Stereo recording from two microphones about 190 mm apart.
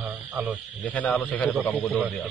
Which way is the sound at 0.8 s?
10° left (ahead or behind).